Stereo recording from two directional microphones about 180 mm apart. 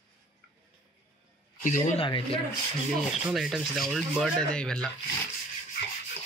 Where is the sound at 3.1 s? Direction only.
Centre (ahead or behind).